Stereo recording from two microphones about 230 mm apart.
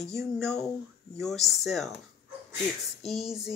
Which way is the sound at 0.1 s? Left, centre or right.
Centre.